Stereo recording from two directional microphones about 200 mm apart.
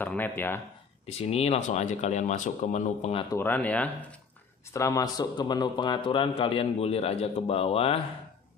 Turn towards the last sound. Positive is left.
turn(degrees=30)  # may be behind; listen again after turning